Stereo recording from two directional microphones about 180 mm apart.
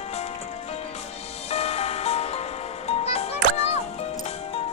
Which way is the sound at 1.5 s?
35° left (ahead or behind).